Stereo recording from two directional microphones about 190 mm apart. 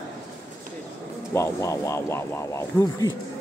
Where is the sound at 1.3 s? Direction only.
15° left (ahead or behind).